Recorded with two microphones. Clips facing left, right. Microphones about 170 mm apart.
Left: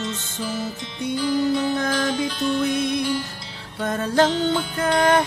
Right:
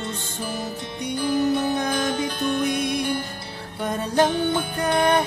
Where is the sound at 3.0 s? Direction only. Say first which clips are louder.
Left 1 dB; 55° right (ahead or behind).